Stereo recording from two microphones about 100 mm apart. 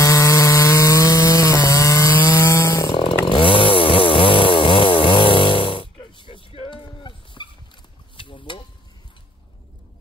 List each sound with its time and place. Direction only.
0.0 s sawing: 35° left (ahead or behind)
2.9 s chainsaw: 75° left (ahead or behind)
3.3 s chainsaw: 60° left (ahead or behind)
6.7 s clip-clop: 50° left (ahead or behind)
8.2 s a sound: 55° left (ahead or behind)